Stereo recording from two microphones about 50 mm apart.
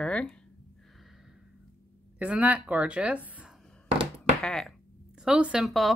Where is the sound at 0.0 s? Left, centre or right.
Left.